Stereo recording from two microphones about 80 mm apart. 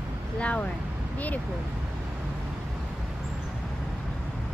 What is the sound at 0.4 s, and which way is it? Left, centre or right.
Speech, centre.